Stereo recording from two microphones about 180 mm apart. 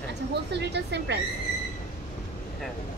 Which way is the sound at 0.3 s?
70° right (ahead or behind).